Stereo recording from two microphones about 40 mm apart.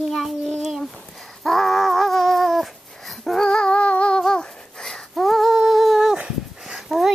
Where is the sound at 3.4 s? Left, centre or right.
Left.